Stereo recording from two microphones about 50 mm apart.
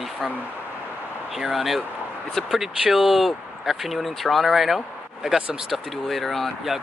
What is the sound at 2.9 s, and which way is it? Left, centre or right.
Speech, centre.